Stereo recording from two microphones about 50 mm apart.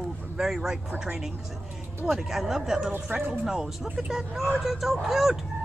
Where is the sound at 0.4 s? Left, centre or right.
Centre.